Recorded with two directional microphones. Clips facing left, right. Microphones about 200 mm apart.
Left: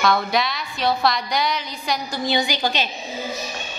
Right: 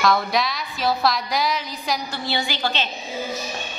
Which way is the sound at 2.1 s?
15° left (ahead or behind).